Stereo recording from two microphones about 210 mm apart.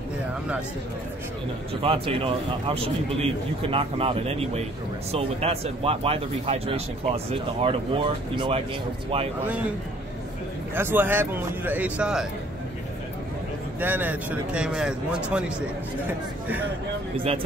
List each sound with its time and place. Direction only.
1.8 s speech: 25° right (ahead or behind)
10.7 s a man's voice: 10° right (ahead or behind)
13.7 s a man's voice: 10° right (ahead or behind)